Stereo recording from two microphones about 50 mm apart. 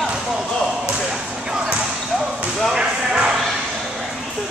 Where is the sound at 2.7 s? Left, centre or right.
Centre.